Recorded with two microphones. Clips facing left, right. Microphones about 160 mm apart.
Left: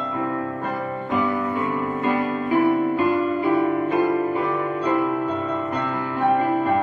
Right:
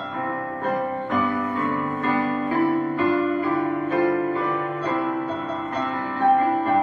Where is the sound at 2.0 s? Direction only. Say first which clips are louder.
Even; 20° left (ahead or behind).